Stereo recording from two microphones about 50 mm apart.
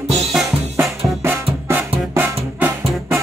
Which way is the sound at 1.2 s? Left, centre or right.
Right.